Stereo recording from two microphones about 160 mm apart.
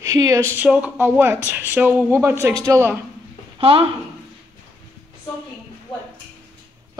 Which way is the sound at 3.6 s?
35° right (ahead or behind).